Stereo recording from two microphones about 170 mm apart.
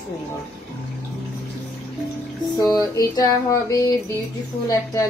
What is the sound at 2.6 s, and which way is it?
A woman's voice, 20° left (ahead or behind).